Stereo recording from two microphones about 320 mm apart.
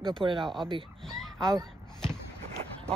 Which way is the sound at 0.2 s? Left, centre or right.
Centre.